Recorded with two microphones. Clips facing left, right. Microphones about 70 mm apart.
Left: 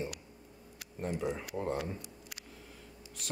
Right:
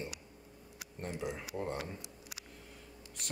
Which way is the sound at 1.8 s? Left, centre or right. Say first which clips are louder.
Left 4 dB; right.